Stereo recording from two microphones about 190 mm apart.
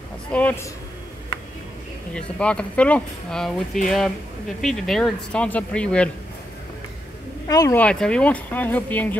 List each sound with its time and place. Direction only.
0.3 s speech: 5° left (ahead or behind)
2.1 s speech: 5° left (ahead or behind)
7.4 s speech: 20° left (ahead or behind)
7.8 s speech: 5° left (ahead or behind)